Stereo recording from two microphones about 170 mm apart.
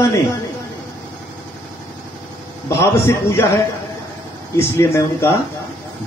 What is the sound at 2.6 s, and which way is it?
Speech, 15° left (ahead or behind).